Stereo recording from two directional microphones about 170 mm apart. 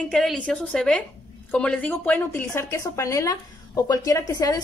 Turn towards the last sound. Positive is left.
turn(degrees=20)  # may be behind; listen again after turning